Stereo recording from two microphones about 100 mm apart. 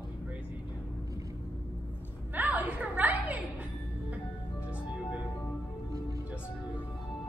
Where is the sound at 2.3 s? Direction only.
15° right (ahead or behind).